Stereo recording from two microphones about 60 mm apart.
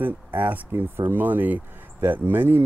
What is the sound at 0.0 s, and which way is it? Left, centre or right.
Speech, right.